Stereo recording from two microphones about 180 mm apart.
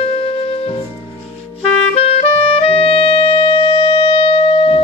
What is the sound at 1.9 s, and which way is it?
Music, 35° left (ahead or behind).